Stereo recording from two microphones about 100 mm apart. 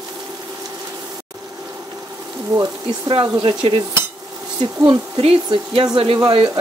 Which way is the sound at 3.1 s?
55° right (ahead or behind).